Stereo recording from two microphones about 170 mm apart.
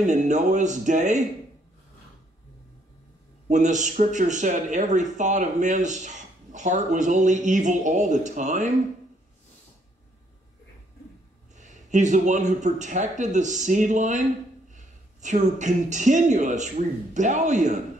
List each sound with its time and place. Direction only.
0.0 s speech: 45° right (ahead or behind)
3.4 s speech: 45° right (ahead or behind)
11.5 s speech: 45° right (ahead or behind)
15.2 s speech: 45° right (ahead or behind)